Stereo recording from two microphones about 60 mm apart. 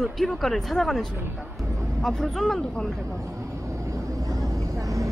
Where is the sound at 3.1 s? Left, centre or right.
Right.